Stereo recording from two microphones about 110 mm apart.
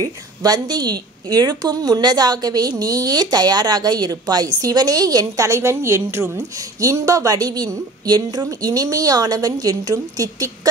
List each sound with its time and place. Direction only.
0.0 s speech: 35° right (ahead or behind)